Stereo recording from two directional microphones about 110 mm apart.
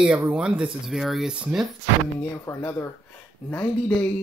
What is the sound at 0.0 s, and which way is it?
Speech, 10° right (ahead or behind).